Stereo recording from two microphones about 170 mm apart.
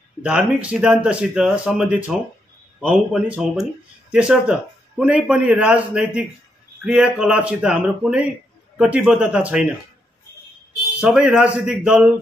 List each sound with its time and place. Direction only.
0.2 s a man's voice: 10° right (ahead or behind)
11.0 s speech: 5° right (ahead or behind)